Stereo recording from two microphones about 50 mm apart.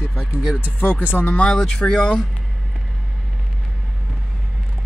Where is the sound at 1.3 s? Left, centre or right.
Left.